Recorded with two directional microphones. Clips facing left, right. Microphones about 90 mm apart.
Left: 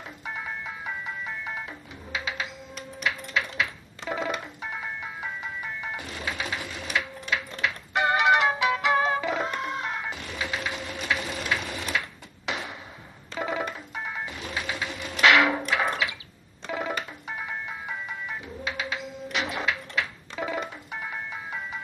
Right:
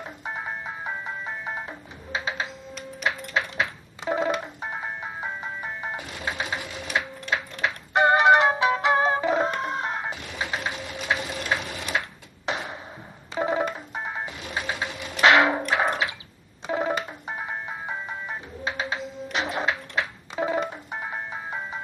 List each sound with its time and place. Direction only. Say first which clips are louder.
0.2 s music: right 2 dB; 35° right (ahead or behind)
12.4 s a sound: right 3 dB; 35° right (ahead or behind)
13.4 s music: right 5 dB; 30° right (ahead or behind)
15.2 s wood: right 2 dB; 30° right (ahead or behind)
15.7 s a sound: right 2 dB; 30° right (ahead or behind)
16.7 s music: right 5 dB; 35° right (ahead or behind)